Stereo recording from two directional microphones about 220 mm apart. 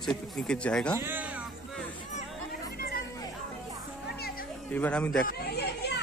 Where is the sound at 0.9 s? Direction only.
10° right (ahead or behind).